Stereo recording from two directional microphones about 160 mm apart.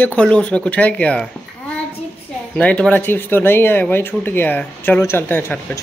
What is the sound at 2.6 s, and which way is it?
Speech, 10° left (ahead or behind).